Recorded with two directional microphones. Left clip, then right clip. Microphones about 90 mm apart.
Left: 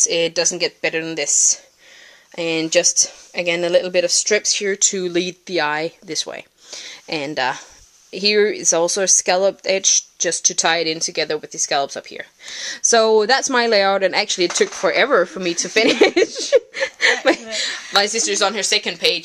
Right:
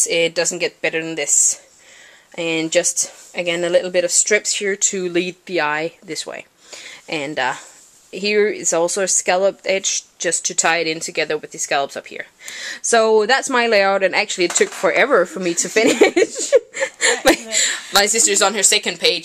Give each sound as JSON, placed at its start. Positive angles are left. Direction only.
{"t": 0.0, "sound": "speech", "side_deg": 30}
{"t": 14.7, "sound": "speech", "side_deg": 10}
{"t": 15.2, "sound": "speech", "side_deg": 0}
{"t": 17.0, "sound": "speech", "side_deg": -25}